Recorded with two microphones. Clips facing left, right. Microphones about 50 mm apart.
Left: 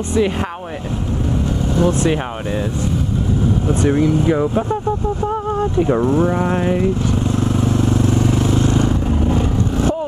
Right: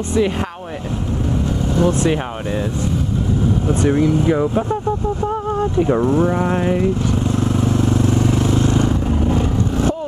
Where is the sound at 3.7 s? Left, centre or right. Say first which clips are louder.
Even; centre.